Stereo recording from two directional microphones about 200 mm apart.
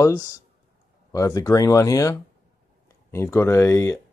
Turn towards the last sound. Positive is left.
turn(degrees=15)  # may be behind; listen again after turning